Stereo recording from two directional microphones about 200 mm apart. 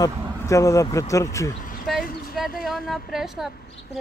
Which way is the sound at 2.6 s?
Centre (ahead or behind).